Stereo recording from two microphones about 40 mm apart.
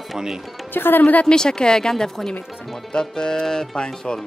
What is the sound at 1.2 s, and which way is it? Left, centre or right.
A woman's voice, centre.